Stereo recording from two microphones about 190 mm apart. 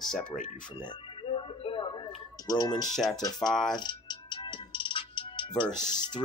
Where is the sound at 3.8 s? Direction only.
25° left (ahead or behind).